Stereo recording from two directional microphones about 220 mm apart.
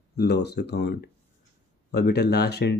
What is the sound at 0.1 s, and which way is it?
Speech, 50° left (ahead or behind).